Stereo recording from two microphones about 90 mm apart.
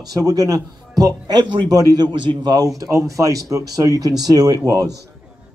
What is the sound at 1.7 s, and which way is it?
Speech, 40° right (ahead or behind).